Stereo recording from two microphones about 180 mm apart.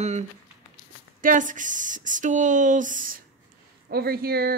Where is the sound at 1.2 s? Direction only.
45° right (ahead or behind).